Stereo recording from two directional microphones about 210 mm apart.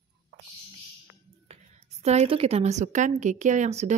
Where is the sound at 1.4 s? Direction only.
30° right (ahead or behind).